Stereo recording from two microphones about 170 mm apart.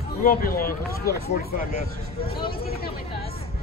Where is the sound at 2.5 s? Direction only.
65° left (ahead or behind).